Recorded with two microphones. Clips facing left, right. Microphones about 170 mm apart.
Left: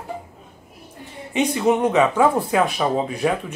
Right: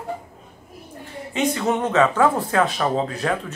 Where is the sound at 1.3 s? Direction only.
15° left (ahead or behind).